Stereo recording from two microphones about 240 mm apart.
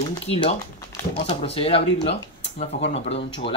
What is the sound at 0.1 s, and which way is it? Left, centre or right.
Speech, left.